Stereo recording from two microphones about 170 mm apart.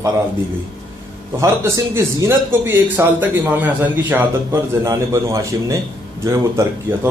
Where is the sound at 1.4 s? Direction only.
15° right (ahead or behind).